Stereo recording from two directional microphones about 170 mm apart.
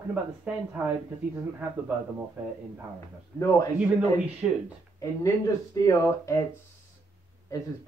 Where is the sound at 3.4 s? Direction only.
20° left (ahead or behind).